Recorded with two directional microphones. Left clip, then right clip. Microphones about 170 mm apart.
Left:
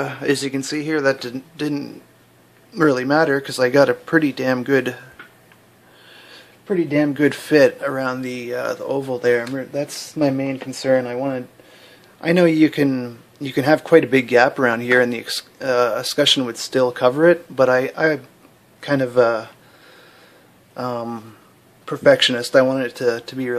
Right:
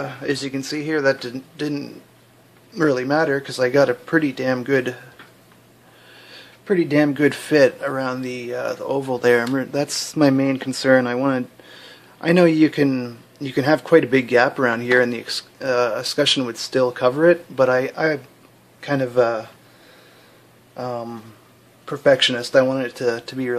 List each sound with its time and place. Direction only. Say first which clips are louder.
0.0 s speech: left 4 dB; 30° left (ahead or behind); by 5.0 s 10° left (ahead or behind)
6.1 s a sound: right 1 dB; 5° left (ahead or behind)
6.7 s speech: right 1 dB; 10° right (ahead or behind)
7.2 s speech: left 3 dB; 5° left (ahead or behind)
9.1 s speech: right 2 dB; 15° right (ahead or behind)
12.2 s speech: even; 5° right (ahead or behind); by 19.4 s 15° left (ahead or behind)
20.7 s speech: left 2 dB; 20° left (ahead or behind); by 23.5 s centre (ahead or behind)